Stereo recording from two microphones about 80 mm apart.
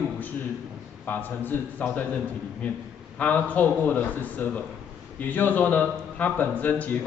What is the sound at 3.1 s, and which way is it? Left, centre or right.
A man's voice, centre.